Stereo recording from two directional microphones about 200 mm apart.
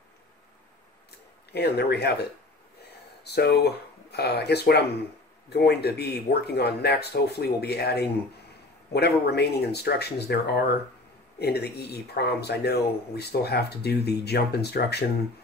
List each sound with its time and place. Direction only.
1.5 s speech: 55° left (ahead or behind)
3.3 s speech: 55° left (ahead or behind)